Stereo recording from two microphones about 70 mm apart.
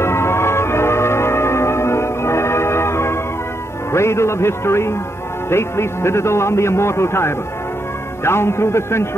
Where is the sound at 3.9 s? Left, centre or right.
Left.